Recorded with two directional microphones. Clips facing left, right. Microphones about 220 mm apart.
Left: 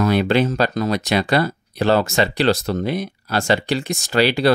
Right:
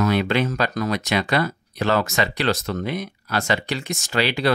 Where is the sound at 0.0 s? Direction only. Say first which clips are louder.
Left 3 dB; 35° left (ahead or behind).